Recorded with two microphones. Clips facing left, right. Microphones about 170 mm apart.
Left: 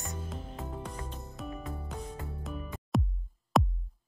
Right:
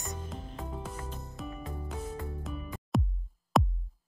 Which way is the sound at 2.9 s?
Centre (ahead or behind).